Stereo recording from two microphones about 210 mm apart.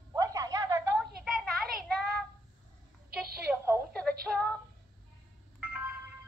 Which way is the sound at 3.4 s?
10° right (ahead or behind).